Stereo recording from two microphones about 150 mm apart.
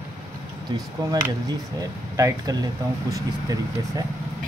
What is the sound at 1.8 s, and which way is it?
Speech, 20° right (ahead or behind).